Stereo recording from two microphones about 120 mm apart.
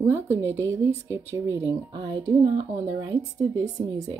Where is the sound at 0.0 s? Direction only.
20° right (ahead or behind).